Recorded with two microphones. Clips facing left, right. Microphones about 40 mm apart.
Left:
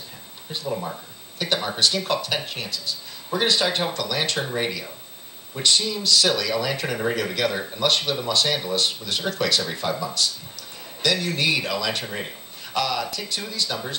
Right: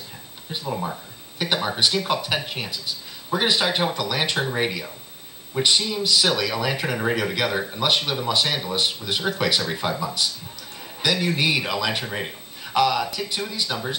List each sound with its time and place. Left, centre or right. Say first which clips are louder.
0.5 s speech: right 1 dB; centre